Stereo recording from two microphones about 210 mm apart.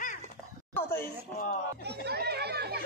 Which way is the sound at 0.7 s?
10° left (ahead or behind).